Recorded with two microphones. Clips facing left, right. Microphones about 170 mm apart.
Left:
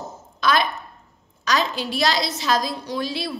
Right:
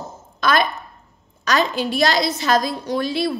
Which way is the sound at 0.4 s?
50° right (ahead or behind).